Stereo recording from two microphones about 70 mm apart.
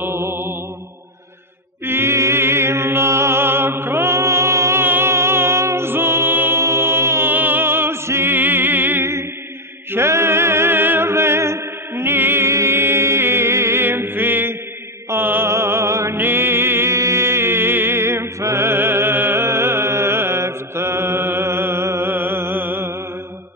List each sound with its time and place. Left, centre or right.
0.0 s mantra: right
1.9 s chant: right
9.9 s music: right
15.0 s mantra: right
16.2 s music: right